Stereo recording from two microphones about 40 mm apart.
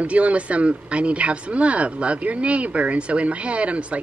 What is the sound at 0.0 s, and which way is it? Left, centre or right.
Speech, right.